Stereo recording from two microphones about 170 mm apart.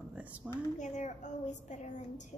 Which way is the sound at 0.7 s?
45° left (ahead or behind).